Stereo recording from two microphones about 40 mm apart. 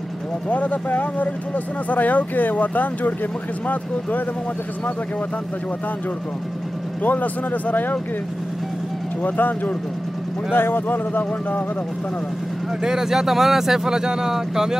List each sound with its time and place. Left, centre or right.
0.5 s speech: left
7.0 s speech: left
9.2 s speech: left
10.5 s speech: left
12.8 s speech: centre